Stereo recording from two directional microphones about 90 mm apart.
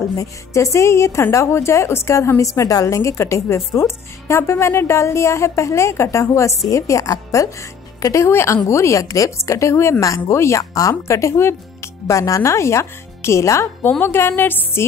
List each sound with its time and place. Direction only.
0.2 s a woman's voice: 35° left (ahead or behind)